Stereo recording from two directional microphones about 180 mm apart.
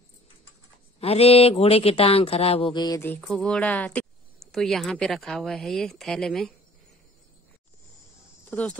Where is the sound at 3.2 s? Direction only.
Centre (ahead or behind).